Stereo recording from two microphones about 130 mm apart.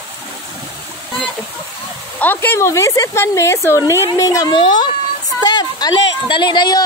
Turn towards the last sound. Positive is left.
turn(degrees=35)  # may be behind; listen again after turning